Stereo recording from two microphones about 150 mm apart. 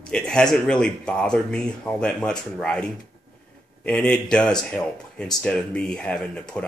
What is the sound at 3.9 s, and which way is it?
Speech, 5° left (ahead or behind).